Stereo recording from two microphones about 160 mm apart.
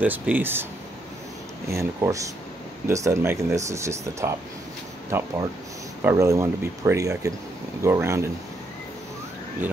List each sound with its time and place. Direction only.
0.0 s speech: 10° right (ahead or behind)
1.7 s speech: 20° right (ahead or behind)